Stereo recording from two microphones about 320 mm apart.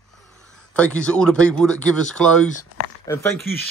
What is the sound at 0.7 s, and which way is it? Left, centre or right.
Speech, centre.